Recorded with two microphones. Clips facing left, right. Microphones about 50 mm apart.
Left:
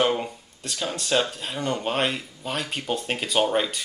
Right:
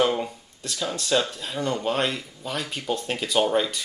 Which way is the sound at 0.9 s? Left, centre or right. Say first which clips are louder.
Even; centre.